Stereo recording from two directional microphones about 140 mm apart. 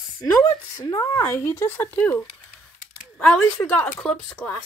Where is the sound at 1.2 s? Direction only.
15° left (ahead or behind).